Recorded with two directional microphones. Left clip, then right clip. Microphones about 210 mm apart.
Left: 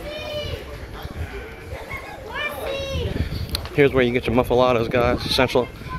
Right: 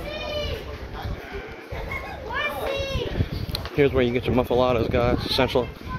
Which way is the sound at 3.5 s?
15° left (ahead or behind).